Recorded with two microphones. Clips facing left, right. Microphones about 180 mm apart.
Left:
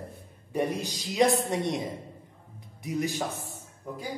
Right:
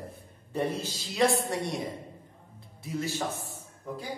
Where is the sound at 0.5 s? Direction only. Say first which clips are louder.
Left 2 dB; 15° left (ahead or behind).